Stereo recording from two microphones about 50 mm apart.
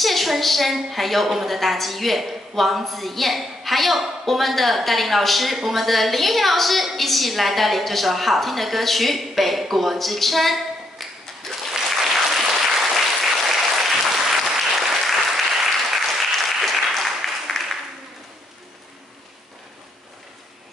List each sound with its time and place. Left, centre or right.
0.0 s a woman's voice: centre
11.7 s applause: centre